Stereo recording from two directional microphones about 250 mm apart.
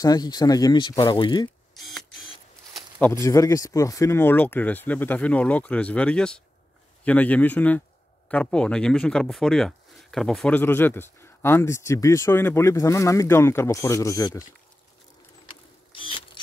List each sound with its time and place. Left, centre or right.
0.0 s speech: centre
1.8 s camera: centre
3.0 s a man's voice: centre
15.4 s mechanisms: left